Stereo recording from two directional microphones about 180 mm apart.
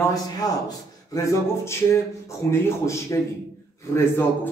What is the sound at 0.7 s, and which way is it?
Speech, 15° left (ahead or behind).